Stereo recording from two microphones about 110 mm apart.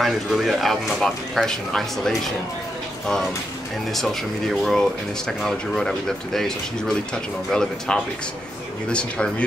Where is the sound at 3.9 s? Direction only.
Centre (ahead or behind).